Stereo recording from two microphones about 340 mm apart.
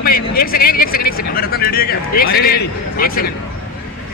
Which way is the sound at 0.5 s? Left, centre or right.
Left.